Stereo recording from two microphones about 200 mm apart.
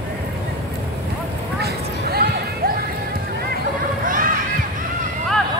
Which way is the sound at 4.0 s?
45° right (ahead or behind).